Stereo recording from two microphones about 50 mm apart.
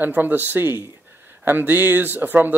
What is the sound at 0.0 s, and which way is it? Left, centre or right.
Speech, right.